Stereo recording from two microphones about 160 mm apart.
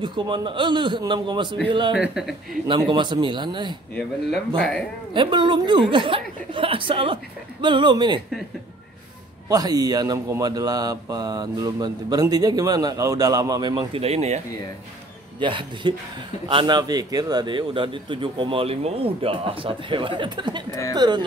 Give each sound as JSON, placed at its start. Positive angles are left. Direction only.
{"t": 0.0, "sound": "speech", "side_deg": -30}
{"t": 2.0, "sound": "speech", "side_deg": -5}
{"t": 2.7, "sound": "speech", "side_deg": -30}
{"t": 4.6, "sound": "speech", "side_deg": 5}
{"t": 5.1, "sound": "a man's voice", "side_deg": -30}
{"t": 9.5, "sound": "speech", "side_deg": -25}
{"t": 15.4, "sound": "a man's voice", "side_deg": -30}